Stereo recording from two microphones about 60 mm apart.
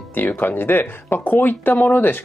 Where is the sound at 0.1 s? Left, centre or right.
Left.